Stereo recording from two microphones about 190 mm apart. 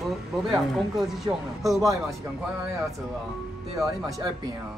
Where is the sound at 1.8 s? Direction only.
15° right (ahead or behind).